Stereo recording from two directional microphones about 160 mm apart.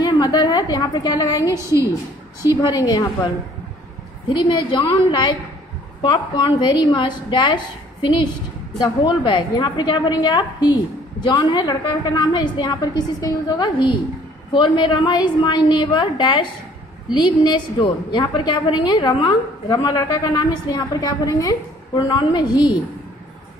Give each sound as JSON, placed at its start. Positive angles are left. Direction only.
{"t": 0.0, "sound": "a woman's voice", "side_deg": 25}
{"t": 4.3, "sound": "a woman's voice", "side_deg": 30}